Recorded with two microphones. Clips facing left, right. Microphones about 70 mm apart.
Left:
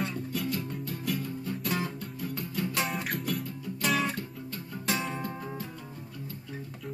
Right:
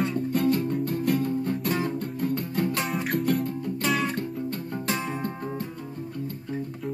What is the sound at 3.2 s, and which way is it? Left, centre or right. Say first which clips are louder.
Music: right 8 dB; right.